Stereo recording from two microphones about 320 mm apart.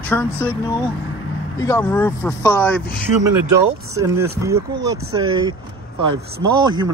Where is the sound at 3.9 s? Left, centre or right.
Centre.